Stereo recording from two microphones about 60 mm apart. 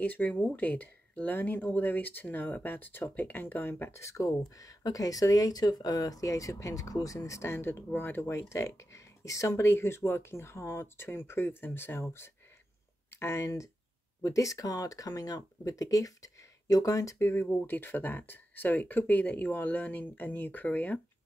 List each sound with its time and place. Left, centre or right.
0.0 s speech: left
3.9 s speech: left
4.6 s speech: left
7.2 s speech: left
9.6 s speech: left
14.2 s speech: left
17.2 s speech: left